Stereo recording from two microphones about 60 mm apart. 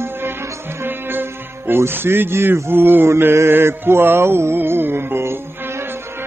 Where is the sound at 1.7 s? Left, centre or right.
Right.